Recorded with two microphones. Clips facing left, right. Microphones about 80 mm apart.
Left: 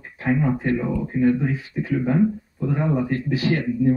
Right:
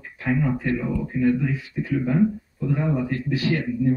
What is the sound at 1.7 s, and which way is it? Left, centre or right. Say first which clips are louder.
Speech: left 1 dB; left.